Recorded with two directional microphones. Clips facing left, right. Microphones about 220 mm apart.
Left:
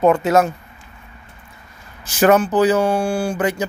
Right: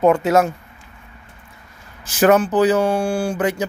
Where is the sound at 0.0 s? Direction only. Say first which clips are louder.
Even; 10° right (ahead or behind).